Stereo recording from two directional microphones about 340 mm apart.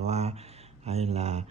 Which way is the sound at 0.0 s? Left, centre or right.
Centre.